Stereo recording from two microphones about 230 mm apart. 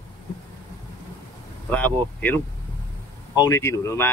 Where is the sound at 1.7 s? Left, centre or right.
Centre.